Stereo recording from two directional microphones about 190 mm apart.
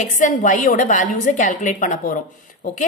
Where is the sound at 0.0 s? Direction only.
40° left (ahead or behind).